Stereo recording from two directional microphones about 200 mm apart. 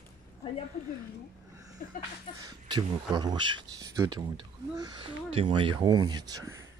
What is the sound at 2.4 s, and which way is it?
Speech, 20° right (ahead or behind).